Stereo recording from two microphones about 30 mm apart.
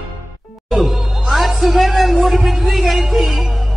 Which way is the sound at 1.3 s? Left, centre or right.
Centre.